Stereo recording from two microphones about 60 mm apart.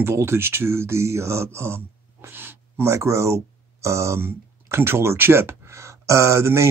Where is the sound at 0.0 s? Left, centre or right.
Right.